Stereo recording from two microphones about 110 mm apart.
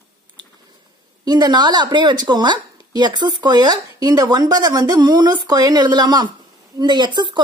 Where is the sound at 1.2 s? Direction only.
40° right (ahead or behind).